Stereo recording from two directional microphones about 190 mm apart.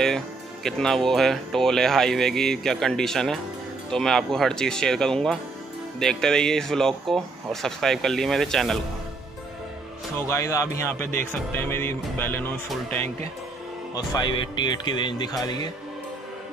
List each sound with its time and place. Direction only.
0.7 s speech: centre (ahead or behind)
10.1 s speech: 15° left (ahead or behind)
13.9 s speech: 25° left (ahead or behind)